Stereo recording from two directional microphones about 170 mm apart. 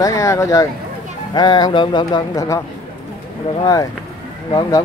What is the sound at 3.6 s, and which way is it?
Speech, 20° left (ahead or behind).